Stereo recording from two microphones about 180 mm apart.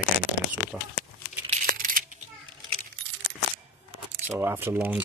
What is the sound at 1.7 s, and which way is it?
Children playing, 50° right (ahead or behind).